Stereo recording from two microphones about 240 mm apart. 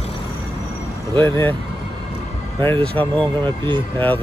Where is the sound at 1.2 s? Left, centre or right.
Centre.